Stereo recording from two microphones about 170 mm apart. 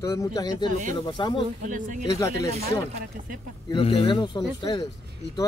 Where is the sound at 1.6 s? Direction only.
50° right (ahead or behind).